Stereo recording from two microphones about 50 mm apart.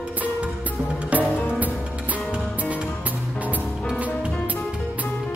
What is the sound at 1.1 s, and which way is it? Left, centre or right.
Music, right.